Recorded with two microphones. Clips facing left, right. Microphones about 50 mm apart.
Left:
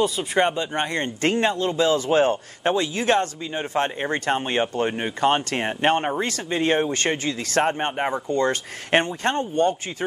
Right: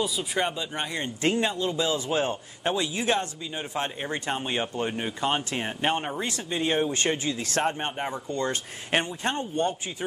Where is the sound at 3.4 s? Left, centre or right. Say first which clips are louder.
Left 6 dB; centre.